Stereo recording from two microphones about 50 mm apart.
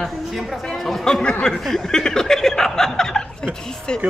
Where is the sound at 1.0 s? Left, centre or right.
Centre.